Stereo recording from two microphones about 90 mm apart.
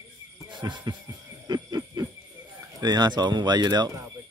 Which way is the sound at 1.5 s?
45° right (ahead or behind).